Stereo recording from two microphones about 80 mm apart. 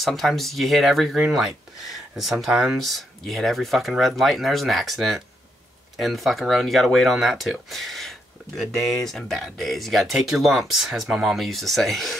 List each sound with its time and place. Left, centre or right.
0.0 s speech: centre